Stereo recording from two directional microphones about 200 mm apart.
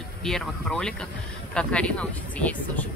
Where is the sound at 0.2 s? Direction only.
5° left (ahead or behind).